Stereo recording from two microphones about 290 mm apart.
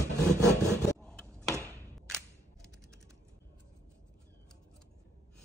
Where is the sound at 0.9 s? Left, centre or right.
Centre.